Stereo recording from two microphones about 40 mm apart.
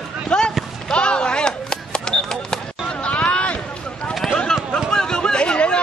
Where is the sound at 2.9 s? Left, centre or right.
Left.